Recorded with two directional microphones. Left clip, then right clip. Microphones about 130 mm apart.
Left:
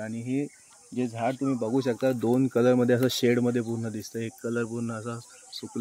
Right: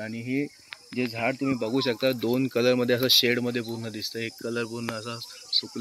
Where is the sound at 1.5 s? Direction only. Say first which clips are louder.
Right 1 dB; 45° left (ahead or behind); by 3.0 s 90° left.